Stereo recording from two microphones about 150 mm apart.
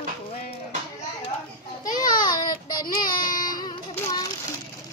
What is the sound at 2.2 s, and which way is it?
Child singing, 25° left (ahead or behind).